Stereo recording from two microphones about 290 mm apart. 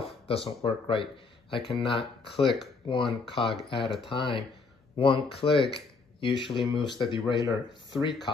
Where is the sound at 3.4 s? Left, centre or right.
Centre.